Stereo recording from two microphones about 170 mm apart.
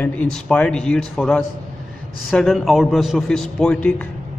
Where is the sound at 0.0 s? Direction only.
10° left (ahead or behind).